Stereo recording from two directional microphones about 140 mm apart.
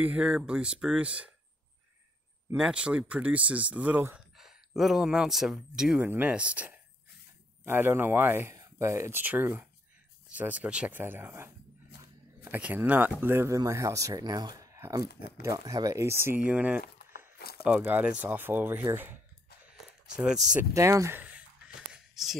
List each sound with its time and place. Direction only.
0.0 s speech: 10° right (ahead or behind)
2.5 s speech: 5° right (ahead or behind)
4.4 s speech: centre (ahead or behind)
20.7 s speech: 20° right (ahead or behind)
21.9 s a sound: centre (ahead or behind)